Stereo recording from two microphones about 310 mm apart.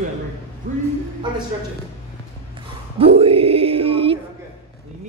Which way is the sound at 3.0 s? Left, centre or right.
Centre.